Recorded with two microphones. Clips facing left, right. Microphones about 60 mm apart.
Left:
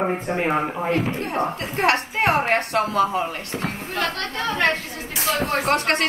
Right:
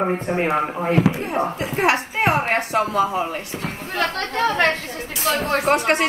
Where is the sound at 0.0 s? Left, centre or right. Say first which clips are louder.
Right 2 dB; centre.